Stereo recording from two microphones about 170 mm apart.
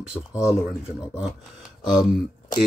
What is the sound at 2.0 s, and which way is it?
Speech, 25° left (ahead or behind).